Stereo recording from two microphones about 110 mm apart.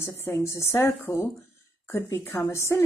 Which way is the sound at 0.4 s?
25° left (ahead or behind).